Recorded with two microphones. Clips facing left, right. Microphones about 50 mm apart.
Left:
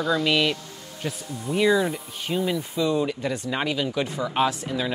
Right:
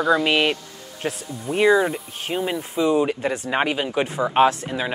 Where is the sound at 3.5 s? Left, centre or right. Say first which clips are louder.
Right 4 dB; right.